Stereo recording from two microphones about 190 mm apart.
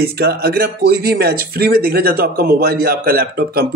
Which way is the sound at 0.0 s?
55° right (ahead or behind).